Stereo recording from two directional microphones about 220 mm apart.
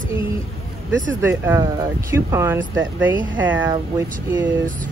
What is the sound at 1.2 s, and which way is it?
Speech, 10° right (ahead or behind).